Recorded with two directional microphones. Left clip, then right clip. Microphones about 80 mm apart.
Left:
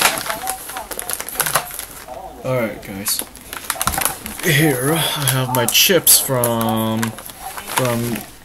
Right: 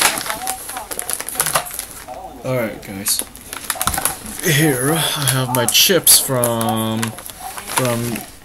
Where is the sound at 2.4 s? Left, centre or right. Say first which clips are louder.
Left 1 dB; centre.